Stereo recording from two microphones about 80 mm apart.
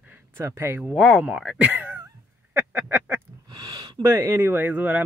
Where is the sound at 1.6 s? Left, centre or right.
Right.